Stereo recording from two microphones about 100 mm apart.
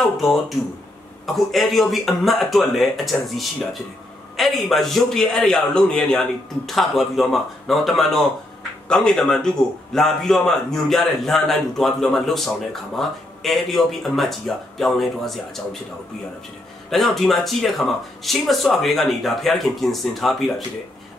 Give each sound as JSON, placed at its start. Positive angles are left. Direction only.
{"t": 0.2, "sound": "a man's voice", "side_deg": 0}
{"t": 16.9, "sound": "a man's voice", "side_deg": 0}